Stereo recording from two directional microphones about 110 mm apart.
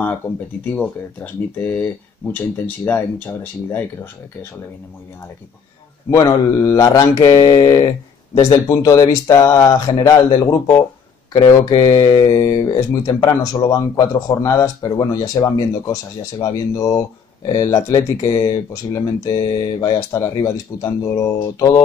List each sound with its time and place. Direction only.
0.7 s speech: 15° left (ahead or behind)
6.0 s speech: 30° left (ahead or behind)
19.8 s speech: 25° left (ahead or behind)